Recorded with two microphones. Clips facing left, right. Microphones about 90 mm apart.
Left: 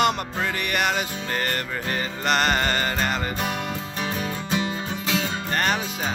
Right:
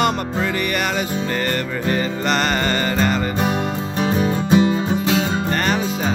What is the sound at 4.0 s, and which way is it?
Music, 25° right (ahead or behind).